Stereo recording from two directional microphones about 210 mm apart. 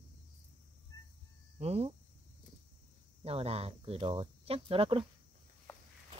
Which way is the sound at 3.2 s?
30° right (ahead or behind).